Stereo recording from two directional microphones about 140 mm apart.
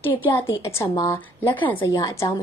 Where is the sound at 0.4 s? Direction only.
20° left (ahead or behind).